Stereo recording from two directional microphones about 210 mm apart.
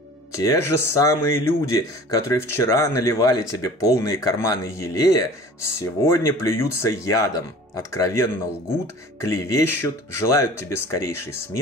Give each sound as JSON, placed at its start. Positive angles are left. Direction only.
{"t": 0.4, "sound": "speech", "side_deg": 15}